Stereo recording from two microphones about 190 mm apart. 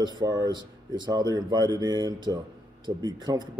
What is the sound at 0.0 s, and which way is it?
Speech, 20° right (ahead or behind).